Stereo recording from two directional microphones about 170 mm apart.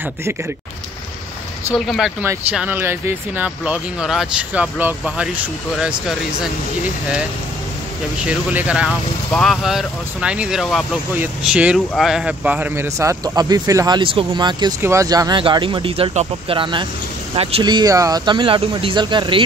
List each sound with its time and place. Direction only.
1.9 s speech: centre (ahead or behind)
8.3 s speech: 5° right (ahead or behind); by 14.7 s 30° right (ahead or behind)
14.8 s speech: 15° right (ahead or behind)